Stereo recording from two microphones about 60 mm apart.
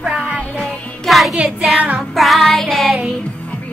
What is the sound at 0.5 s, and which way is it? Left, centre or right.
Music, centre.